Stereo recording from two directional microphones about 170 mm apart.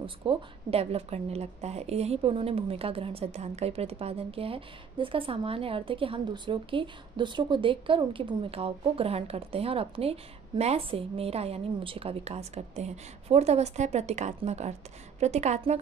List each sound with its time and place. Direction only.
0.0 s a woman's voice: 30° right (ahead or behind)